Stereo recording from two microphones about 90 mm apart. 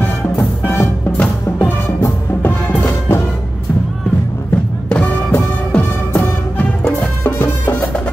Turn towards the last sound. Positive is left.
turn(degrees=20)  # may be behind; listen again after turning